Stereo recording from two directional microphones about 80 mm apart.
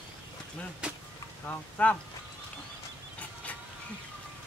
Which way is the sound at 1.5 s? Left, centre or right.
Centre.